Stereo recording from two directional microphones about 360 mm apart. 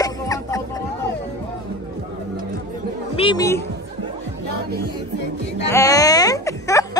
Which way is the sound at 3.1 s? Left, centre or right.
Centre.